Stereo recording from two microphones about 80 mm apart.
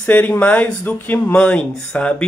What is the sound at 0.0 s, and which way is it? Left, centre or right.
Speech, centre.